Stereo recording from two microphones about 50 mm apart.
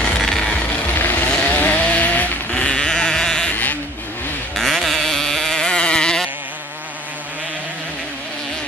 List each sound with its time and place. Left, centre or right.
0.3 s music: centre
0.6 s music: left
1.3 s chainsaw: centre
1.6 s sheep: left; by 3.5 s centre
4.6 s a sound: centre